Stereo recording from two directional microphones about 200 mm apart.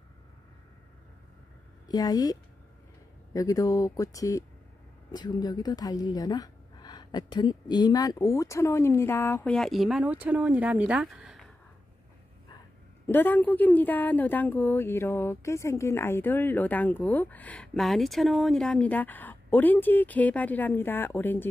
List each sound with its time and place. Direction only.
1.9 s a woman's voice: 20° left (ahead or behind)
3.3 s a woman's voice: 15° left (ahead or behind); by 11.4 s 5° right (ahead or behind)
13.0 s a woman's voice: 10° left (ahead or behind)